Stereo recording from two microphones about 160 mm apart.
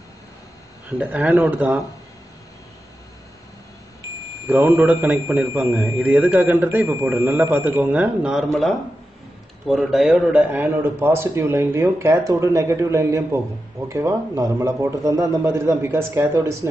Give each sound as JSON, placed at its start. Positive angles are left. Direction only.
{"t": 0.8, "sound": "a man's voice", "side_deg": -10}
{"t": 4.5, "sound": "a man's voice", "side_deg": -10}